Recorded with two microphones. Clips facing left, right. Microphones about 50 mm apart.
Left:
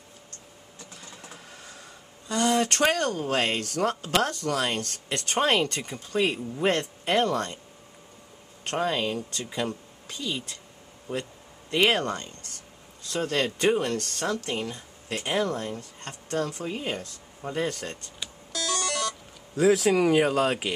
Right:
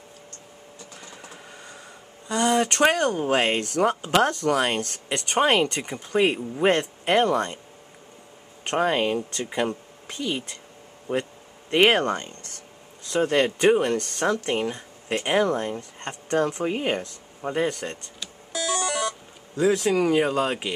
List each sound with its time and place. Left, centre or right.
1.0 s printer: centre
2.2 s speech: centre
5.2 s speech: centre
8.6 s speech: right
13.1 s speech: centre
17.6 s speech: centre
18.5 s music: centre
19.5 s speech: centre